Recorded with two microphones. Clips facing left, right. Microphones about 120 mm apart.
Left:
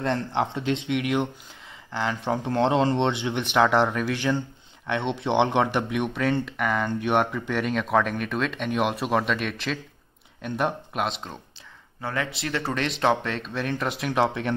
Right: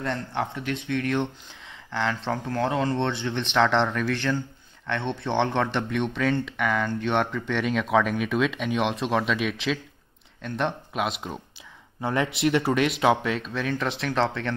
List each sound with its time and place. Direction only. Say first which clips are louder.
0.0 s speech: left 3 dB; 25° left (ahead or behind); by 2.3 s 5° left (ahead or behind)
2.3 s speech: left 7 dB; 20° left (ahead or behind); by 11.3 s 5° right (ahead or behind)
12.0 s speech: right 5 dB; 20° right (ahead or behind); by 14.5 s 15° left (ahead or behind)